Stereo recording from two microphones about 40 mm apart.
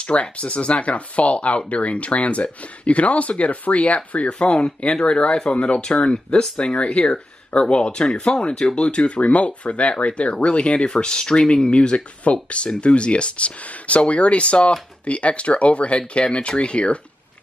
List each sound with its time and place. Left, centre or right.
0.0 s speech: left
4.3 s speech: left